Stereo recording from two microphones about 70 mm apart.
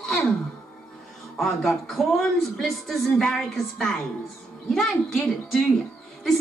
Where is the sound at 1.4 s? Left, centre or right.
Centre.